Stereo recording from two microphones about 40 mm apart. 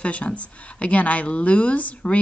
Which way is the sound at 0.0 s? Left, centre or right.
Left.